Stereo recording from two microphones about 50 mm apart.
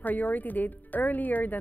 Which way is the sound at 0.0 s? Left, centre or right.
Left.